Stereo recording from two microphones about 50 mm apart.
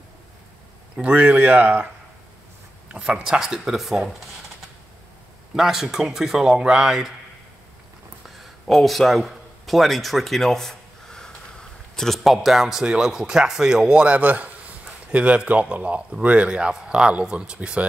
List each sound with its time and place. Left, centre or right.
0.9 s speech: right
2.9 s speech: right
5.6 s speech: centre
8.4 s a sound: centre
13.0 s a man's voice: centre